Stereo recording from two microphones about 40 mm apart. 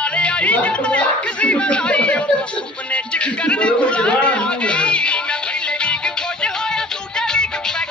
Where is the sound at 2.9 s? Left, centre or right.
Left.